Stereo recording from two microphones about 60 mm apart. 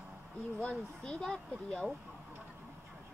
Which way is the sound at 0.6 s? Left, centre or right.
Centre.